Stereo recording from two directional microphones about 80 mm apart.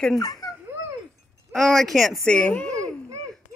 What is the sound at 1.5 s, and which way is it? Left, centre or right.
Speech, centre.